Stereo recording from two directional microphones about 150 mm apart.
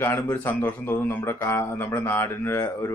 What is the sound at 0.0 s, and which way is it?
A man's voice, 15° left (ahead or behind).